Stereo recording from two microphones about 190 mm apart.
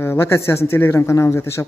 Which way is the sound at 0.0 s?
15° left (ahead or behind).